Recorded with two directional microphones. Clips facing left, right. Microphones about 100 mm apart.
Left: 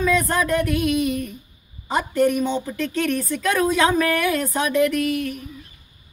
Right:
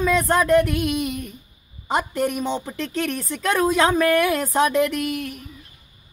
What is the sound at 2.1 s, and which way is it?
A woman's voice, 20° right (ahead or behind).